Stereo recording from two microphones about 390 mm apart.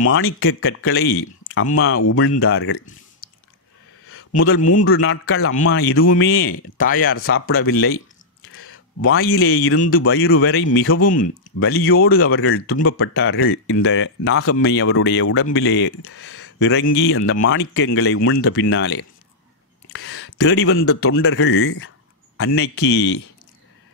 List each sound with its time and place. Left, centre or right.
0.0 s speech: left
4.6 s speech: centre
4.8 s speech: left